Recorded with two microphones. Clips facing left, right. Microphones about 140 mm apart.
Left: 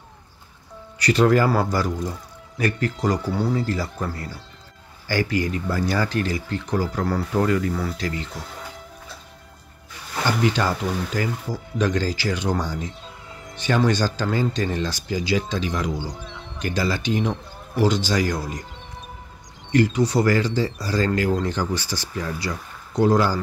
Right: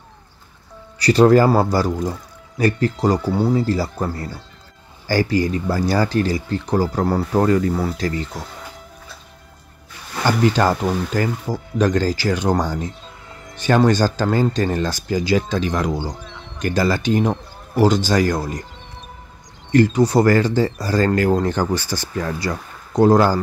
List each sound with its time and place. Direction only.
0.9 s speech: 35° right (ahead or behind)
10.2 s speech: 45° right (ahead or behind)
13.3 s music: centre (ahead or behind)
13.6 s speech: 45° right (ahead or behind)
16.2 s music: centre (ahead or behind)
16.5 s speech: 50° right (ahead or behind)
19.7 s speech: 45° right (ahead or behind)